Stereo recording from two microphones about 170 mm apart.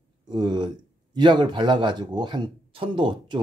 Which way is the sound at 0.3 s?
25° right (ahead or behind).